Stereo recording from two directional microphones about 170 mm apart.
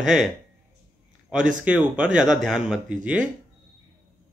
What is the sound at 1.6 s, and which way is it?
Speech, 10° right (ahead or behind).